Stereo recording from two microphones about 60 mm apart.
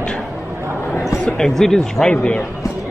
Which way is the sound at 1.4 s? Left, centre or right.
Centre.